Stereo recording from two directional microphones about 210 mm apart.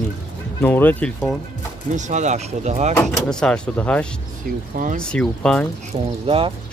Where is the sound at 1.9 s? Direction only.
35° right (ahead or behind).